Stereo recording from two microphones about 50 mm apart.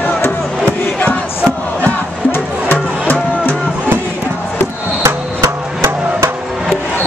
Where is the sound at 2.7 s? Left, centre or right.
Left.